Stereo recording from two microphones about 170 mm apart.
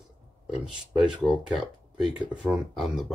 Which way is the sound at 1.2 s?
5° right (ahead or behind).